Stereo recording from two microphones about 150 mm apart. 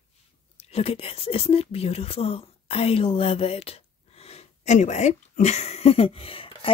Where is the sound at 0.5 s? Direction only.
40° left (ahead or behind).